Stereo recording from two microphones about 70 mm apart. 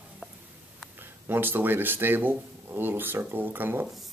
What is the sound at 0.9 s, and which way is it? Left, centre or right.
Speech, right.